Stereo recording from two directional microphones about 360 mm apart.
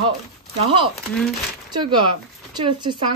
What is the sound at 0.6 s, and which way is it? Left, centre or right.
Speech, centre.